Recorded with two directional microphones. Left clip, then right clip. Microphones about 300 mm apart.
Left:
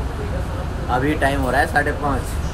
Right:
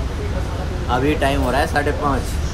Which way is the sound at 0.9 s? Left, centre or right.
Centre.